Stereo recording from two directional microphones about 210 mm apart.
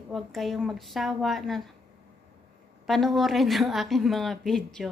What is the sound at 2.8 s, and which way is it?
Speech, centre (ahead or behind).